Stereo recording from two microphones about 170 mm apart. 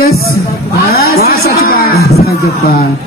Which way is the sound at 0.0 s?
65° left (ahead or behind).